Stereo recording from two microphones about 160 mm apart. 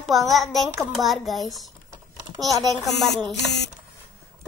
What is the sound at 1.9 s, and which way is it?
Typing, 25° right (ahead or behind).